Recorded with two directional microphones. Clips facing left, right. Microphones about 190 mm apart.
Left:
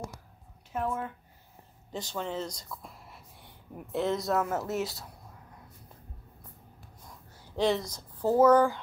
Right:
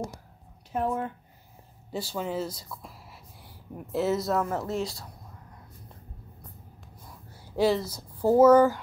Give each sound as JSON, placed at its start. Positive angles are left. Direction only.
{"t": 0.7, "sound": "speech", "side_deg": -35}
{"t": 1.9, "sound": "speech", "side_deg": -10}
{"t": 7.1, "sound": "speech", "side_deg": -5}